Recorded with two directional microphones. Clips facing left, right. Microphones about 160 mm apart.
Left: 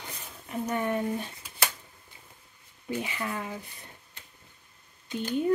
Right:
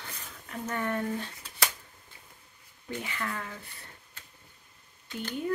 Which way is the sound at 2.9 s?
15° left (ahead or behind).